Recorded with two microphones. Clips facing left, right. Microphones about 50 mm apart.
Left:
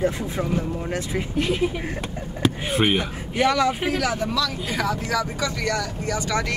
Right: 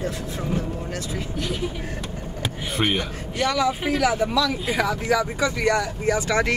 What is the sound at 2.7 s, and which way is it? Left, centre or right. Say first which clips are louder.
Speech: right 1 dB; centre.